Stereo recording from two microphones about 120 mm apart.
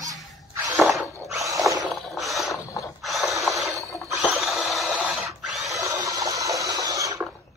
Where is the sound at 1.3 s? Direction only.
25° right (ahead or behind).